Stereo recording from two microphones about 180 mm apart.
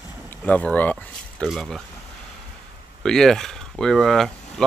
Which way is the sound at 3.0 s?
Centre (ahead or behind).